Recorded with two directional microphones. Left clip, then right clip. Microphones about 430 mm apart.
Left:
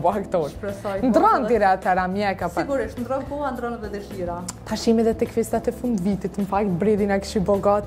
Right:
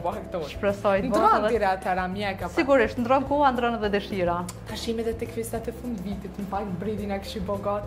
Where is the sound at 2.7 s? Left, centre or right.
Right.